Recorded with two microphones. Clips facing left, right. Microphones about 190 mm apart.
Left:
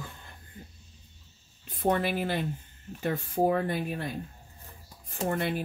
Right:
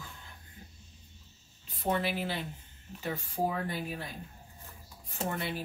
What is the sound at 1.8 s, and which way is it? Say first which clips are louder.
Speech: left 4 dB; 50° left (ahead or behind).